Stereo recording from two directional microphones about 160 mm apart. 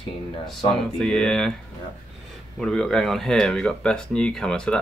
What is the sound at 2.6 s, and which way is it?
Speech, 5° left (ahead or behind).